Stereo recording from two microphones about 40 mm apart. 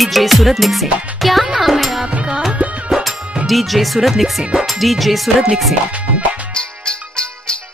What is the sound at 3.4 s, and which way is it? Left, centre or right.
Speech, centre.